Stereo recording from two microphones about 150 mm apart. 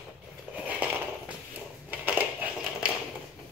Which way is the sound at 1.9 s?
10° right (ahead or behind).